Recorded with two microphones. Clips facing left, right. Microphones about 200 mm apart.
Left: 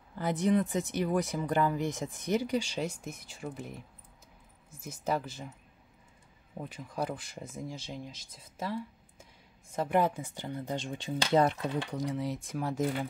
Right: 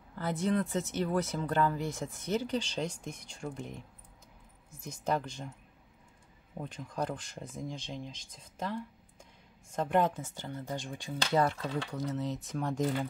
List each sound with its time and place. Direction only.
0.1 s speech: 15° left (ahead or behind)
6.5 s speech: 5° left (ahead or behind)